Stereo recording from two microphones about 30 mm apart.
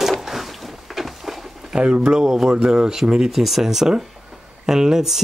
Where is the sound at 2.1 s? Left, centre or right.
Centre.